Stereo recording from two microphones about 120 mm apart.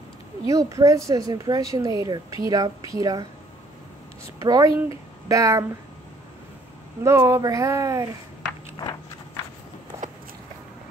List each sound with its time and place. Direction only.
0.5 s speech: 25° right (ahead or behind)
4.5 s speech: 30° right (ahead or behind)
7.0 s speech: 25° right (ahead or behind)